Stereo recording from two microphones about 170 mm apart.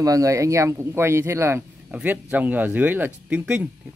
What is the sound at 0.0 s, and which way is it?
Speech, 20° right (ahead or behind).